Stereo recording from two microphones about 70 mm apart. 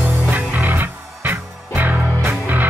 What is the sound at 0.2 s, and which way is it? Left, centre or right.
Music, right.